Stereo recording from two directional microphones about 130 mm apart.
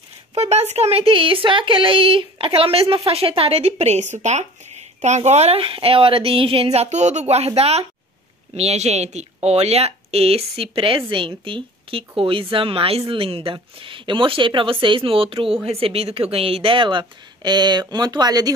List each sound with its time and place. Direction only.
0.3 s a woman's voice: 55° right (ahead or behind); by 18.5 s 30° right (ahead or behind)